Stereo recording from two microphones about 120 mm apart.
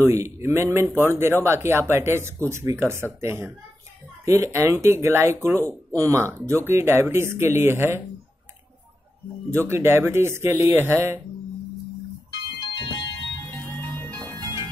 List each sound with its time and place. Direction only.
0.0 s speech: 25° right (ahead or behind)
9.7 s speech: 20° right (ahead or behind)
12.5 s music: 40° left (ahead or behind)
13.7 s organ: 15° left (ahead or behind)